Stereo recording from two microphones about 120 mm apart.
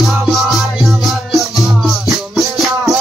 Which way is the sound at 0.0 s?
Centre (ahead or behind).